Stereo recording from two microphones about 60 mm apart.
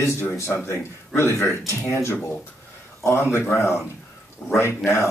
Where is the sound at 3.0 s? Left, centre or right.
Left.